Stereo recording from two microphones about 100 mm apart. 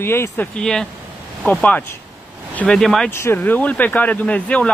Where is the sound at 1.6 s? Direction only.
20° left (ahead or behind).